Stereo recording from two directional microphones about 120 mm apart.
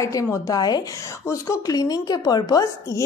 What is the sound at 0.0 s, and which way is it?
A woman's voice, 25° left (ahead or behind).